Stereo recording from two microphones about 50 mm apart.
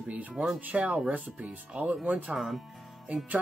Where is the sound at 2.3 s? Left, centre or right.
Centre.